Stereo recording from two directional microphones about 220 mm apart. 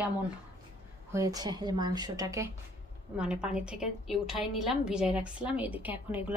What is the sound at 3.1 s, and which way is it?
A woman's voice, 5° right (ahead or behind).